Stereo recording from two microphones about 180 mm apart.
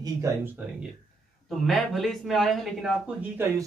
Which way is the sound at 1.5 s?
Centre (ahead or behind).